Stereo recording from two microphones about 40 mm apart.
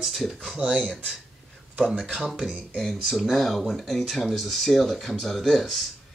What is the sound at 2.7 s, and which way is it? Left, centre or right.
Speech, centre.